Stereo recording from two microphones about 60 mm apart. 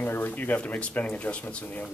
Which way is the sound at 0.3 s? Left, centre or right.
Left.